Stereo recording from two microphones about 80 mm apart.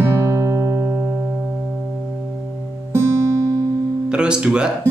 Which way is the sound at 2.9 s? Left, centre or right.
Right.